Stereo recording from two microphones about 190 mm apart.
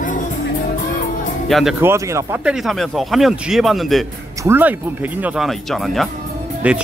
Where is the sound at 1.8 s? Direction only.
15° right (ahead or behind).